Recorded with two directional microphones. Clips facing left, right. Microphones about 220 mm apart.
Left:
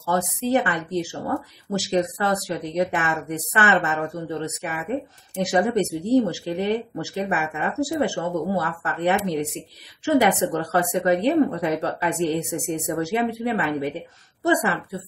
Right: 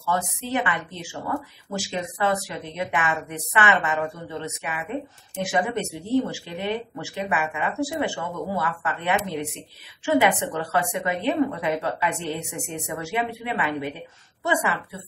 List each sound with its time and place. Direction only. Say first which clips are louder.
0.0 s speech: left 4 dB; 40° left (ahead or behind)